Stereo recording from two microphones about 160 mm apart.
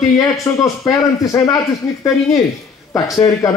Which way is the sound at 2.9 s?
20° left (ahead or behind).